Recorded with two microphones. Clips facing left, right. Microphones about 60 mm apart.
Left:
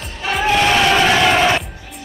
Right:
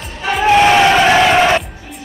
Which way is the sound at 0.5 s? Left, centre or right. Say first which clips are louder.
Right 5 dB; centre.